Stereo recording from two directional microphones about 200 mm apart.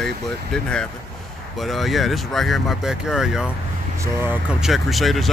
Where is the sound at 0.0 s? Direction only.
5° left (ahead or behind).